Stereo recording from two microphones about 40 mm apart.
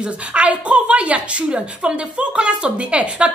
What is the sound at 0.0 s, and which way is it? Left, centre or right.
A woman's voice, right.